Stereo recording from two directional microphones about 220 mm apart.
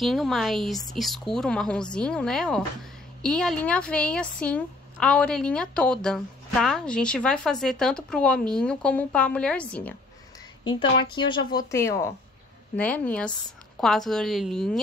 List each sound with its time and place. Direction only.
0.0 s a woman's voice: centre (ahead or behind)
10.6 s a woman's voice: 20° left (ahead or behind); by 14.8 s centre (ahead or behind)